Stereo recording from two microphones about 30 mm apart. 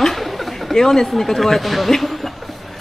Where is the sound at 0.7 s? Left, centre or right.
Centre.